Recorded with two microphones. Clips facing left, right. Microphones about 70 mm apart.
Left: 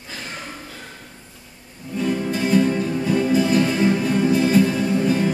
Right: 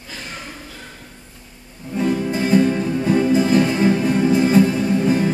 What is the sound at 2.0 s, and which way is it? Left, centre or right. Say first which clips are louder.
Music: right 2 dB; right.